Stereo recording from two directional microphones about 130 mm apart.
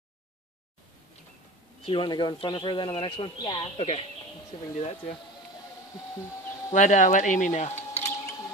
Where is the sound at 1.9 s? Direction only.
35° left (ahead or behind).